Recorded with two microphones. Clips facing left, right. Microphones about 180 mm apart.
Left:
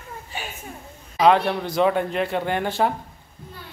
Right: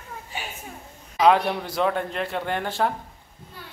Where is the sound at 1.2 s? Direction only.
5° right (ahead or behind).